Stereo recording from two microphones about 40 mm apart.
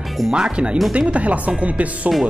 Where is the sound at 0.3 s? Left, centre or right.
Right.